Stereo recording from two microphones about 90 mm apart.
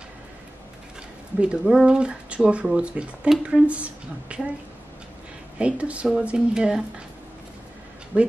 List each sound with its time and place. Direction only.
1.4 s speech: 5° right (ahead or behind)
5.6 s speech: 15° right (ahead or behind)
8.1 s speech: 15° right (ahead or behind)